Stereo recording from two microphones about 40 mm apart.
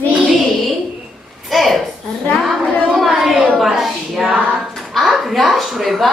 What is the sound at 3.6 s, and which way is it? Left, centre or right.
A woman's voice, centre.